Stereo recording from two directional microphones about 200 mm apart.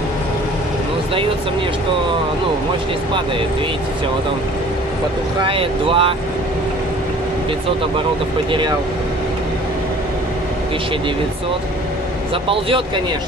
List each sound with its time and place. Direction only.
5.5 s speech: 25° right (ahead or behind)
8.5 s speech: 25° right (ahead or behind)
12.4 s speech: 25° right (ahead or behind)